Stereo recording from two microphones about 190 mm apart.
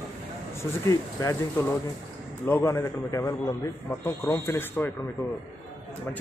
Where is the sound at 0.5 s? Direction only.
15° left (ahead or behind).